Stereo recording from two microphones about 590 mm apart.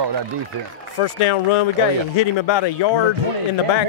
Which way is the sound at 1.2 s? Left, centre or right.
Left.